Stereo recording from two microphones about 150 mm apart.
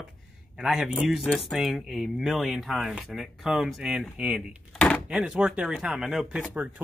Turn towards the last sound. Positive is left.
turn(degrees=-5)  # may be behind; listen again after turning